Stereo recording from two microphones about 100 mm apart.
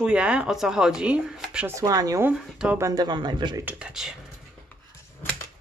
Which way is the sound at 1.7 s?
35° right (ahead or behind).